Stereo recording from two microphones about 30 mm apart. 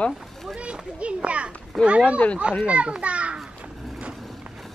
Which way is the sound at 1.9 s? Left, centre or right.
Right.